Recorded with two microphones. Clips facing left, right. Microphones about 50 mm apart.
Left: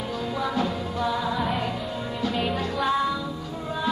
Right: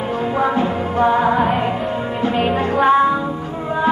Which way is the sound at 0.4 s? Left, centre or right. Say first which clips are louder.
Right 8 dB; right.